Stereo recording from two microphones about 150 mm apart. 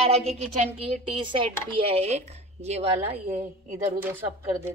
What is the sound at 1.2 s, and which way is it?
Speech, 35° right (ahead or behind).